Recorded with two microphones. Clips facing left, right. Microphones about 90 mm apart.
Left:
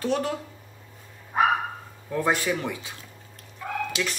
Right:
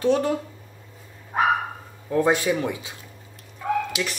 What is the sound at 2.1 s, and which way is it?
Speech, 20° right (ahead or behind).